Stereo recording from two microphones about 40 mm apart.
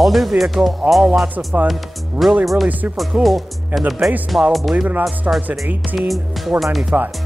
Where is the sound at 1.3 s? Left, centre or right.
Right.